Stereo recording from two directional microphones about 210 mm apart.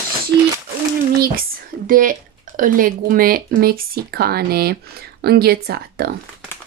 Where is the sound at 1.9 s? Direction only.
40° right (ahead or behind).